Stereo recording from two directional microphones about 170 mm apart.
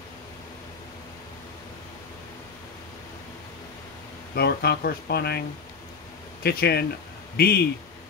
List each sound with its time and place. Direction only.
4.4 s speech: 70° left (ahead or behind)
6.4 s a man's voice: 65° left (ahead or behind)